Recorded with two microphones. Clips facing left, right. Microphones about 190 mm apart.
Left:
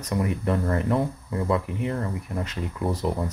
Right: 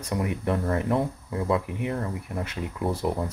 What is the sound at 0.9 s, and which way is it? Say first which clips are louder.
Speech: left 1 dB; centre (ahead or behind).